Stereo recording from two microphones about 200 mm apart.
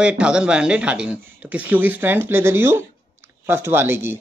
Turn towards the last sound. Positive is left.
turn(degrees=-10)  # may be behind; listen again after turning